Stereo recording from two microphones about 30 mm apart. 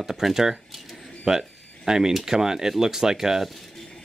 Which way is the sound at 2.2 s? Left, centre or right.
Centre.